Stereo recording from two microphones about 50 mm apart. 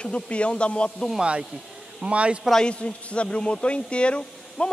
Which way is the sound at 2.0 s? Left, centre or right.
Right.